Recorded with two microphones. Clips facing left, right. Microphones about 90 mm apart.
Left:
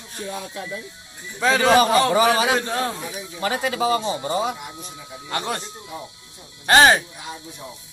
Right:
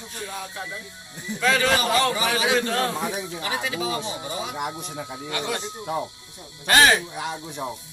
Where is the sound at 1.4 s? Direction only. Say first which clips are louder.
Left 4 dB; 25° left (ahead or behind).